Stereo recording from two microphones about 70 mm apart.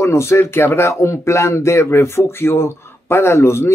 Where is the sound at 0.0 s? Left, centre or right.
Left.